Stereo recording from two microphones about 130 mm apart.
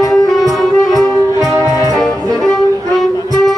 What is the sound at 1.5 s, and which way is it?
Music, 25° right (ahead or behind).